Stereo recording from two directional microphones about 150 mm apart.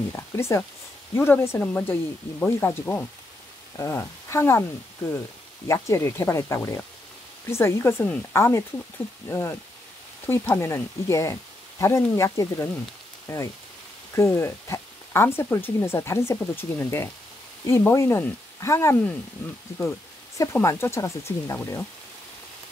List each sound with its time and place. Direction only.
0.1 s speech: 15° left (ahead or behind)
5.7 s speech: 20° left (ahead or behind)
20.5 s speech: 15° left (ahead or behind)